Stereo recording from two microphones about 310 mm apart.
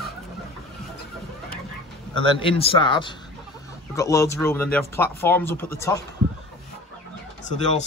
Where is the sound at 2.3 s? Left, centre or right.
Centre.